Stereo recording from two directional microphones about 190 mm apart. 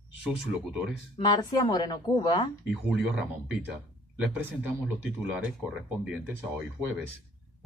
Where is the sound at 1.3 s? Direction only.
20° left (ahead or behind).